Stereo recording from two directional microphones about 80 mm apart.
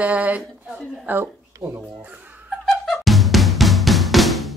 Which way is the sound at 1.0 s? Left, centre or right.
Right.